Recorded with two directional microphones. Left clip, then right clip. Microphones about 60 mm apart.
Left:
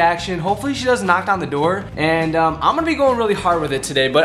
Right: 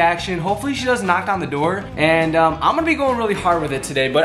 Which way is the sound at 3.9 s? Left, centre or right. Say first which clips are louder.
Left 2 dB; centre.